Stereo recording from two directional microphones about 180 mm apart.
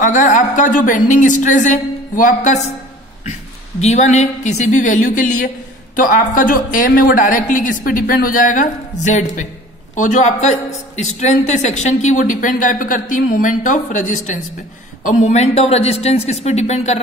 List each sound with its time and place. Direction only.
0.0 s a man's voice: 45° left (ahead or behind)
3.8 s a woman's voice: 40° left (ahead or behind)